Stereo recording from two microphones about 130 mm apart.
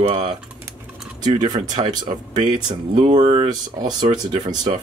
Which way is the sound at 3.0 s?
55° right (ahead or behind).